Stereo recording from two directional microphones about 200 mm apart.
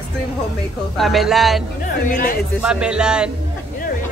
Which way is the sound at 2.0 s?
45° left (ahead or behind).